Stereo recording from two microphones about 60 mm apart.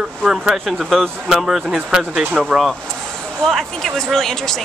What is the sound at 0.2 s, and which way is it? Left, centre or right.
Speech, centre.